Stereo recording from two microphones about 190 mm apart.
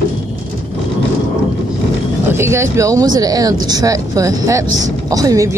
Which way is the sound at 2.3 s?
15° right (ahead or behind).